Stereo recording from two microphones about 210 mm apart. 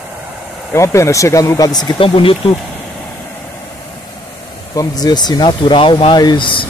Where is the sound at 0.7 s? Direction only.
15° left (ahead or behind).